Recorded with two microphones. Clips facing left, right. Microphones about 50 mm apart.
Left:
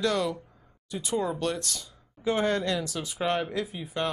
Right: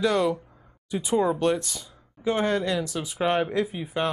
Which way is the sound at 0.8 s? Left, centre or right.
Centre.